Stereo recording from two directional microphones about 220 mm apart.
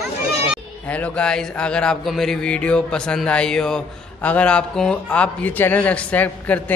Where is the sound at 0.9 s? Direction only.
5° left (ahead or behind).